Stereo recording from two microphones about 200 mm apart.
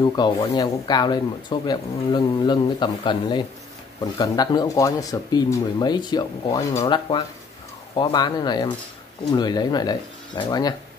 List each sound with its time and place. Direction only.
0.0 s speech: 20° left (ahead or behind)